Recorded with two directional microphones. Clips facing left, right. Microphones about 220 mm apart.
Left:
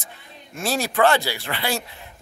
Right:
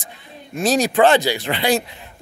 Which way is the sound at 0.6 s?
20° right (ahead or behind).